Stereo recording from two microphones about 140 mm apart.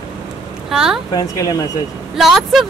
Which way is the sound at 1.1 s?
25° left (ahead or behind).